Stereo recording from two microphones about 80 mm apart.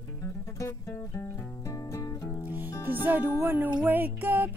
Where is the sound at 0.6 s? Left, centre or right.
Left.